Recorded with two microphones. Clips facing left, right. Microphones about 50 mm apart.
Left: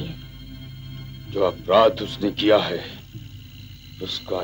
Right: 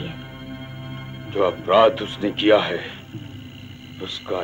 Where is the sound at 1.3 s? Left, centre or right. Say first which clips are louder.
Right 1 dB; right.